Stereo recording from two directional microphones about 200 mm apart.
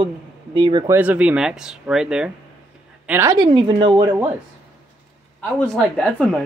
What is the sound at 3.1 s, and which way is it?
A woman's voice, 15° right (ahead or behind).